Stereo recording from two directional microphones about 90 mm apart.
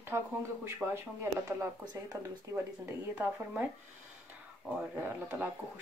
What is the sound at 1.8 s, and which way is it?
Speech, 45° right (ahead or behind).